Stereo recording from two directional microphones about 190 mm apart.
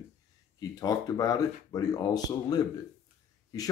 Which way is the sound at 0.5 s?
20° left (ahead or behind).